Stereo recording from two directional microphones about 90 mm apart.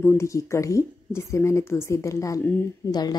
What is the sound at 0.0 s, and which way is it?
Speech, 35° left (ahead or behind).